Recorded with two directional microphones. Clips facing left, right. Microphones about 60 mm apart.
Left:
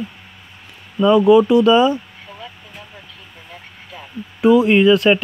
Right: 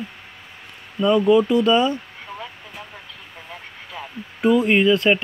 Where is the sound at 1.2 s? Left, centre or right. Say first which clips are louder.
Left 5 dB; left.